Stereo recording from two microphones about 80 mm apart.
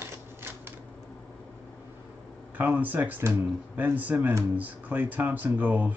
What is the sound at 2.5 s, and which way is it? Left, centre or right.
Speech, right.